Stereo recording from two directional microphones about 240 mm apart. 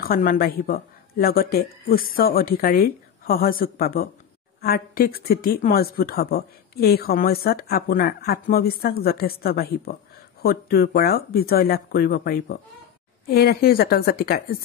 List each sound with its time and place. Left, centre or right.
0.0 s speech: left